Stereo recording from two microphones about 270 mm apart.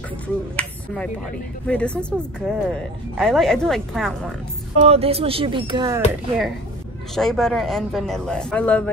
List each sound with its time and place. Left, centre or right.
0.6 s speech: centre
4.7 s speech: right
7.2 s speech: centre